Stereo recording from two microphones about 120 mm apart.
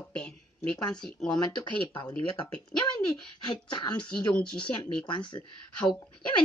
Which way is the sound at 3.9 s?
10° left (ahead or behind).